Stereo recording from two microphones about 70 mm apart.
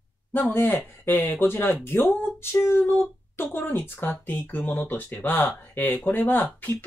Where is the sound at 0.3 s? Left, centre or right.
Left.